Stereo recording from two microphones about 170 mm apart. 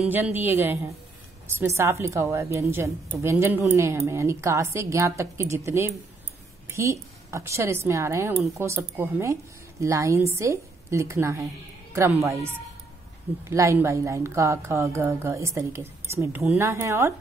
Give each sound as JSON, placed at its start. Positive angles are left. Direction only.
{"t": 0.0, "sound": "a woman's voice", "side_deg": -10}